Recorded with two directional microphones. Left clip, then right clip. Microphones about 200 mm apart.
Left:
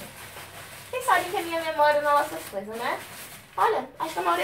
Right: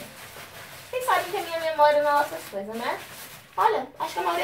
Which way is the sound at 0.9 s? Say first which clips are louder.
Right 2 dB; centre (ahead or behind).